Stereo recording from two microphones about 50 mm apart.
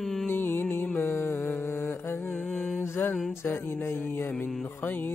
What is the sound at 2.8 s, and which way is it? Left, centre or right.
Mantra, left.